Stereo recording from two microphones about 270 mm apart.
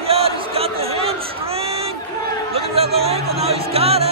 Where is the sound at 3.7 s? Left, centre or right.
Right.